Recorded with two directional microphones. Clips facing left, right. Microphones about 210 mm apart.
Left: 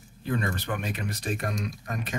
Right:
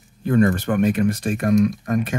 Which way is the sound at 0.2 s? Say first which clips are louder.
Right 12 dB; 50° right (ahead or behind).